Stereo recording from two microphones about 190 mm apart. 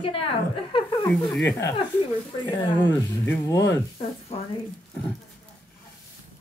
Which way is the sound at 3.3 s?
10° left (ahead or behind).